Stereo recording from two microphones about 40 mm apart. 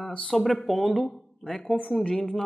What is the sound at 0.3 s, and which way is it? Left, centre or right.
Speech, centre.